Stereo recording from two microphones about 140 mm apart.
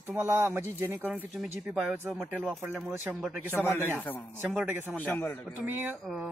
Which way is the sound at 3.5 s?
15° left (ahead or behind).